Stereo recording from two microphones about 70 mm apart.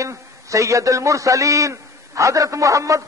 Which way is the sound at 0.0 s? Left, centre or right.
Right.